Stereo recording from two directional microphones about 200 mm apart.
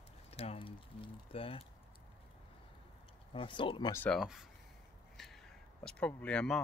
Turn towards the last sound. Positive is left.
turn(degrees=5)  # may be behind; listen again after turning